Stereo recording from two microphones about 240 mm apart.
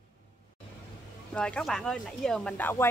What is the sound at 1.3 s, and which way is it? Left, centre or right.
Speech, centre.